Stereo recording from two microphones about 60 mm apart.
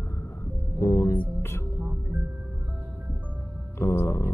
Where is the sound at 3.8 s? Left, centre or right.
Left.